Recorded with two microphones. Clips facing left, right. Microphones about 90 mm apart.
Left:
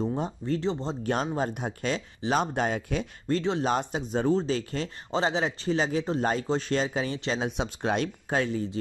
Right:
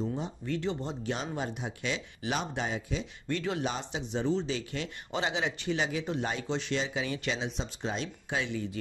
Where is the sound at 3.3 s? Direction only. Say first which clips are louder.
Left 6 dB; 30° left (ahead or behind).